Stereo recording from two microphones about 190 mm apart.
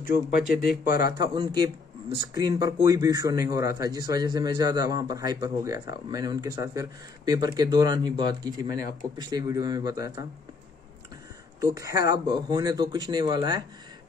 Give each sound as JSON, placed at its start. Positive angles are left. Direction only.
{"t": 0.1, "sound": "speech", "side_deg": 55}
{"t": 1.2, "sound": "speech", "side_deg": -25}
{"t": 11.6, "sound": "speech", "side_deg": -15}